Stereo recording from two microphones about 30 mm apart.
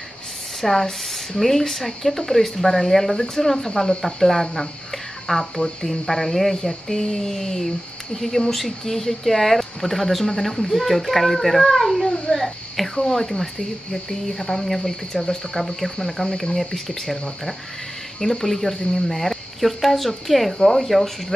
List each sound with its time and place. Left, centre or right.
0.6 s a child's voice: centre
18.2 s speech: centre